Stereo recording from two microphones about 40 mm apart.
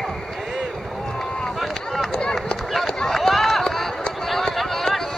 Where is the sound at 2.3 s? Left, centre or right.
Centre.